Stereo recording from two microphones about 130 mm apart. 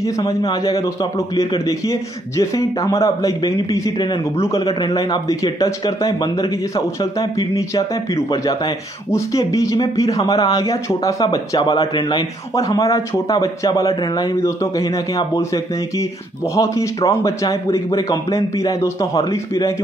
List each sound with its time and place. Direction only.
0.0 s a man's voice: 25° left (ahead or behind)